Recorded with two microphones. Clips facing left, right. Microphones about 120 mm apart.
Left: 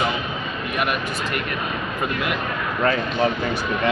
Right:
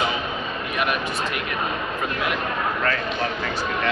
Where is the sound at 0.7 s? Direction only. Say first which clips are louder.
Even; centre (ahead or behind).